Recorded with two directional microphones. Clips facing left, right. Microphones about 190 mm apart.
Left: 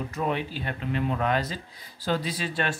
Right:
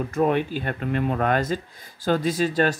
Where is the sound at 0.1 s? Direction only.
50° right (ahead or behind).